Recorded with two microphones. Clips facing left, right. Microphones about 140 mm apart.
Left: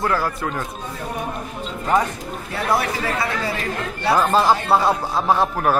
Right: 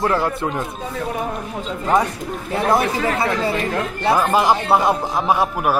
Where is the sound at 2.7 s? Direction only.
25° right (ahead or behind).